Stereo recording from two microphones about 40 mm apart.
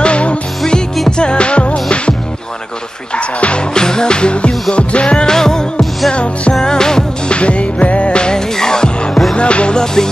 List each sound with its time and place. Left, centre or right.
0.0 s music: left
3.2 s music: left
3.7 s music: centre
5.3 s music: centre
7.3 s music: left